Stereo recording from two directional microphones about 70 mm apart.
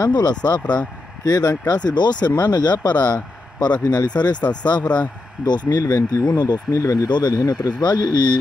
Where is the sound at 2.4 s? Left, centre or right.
Left.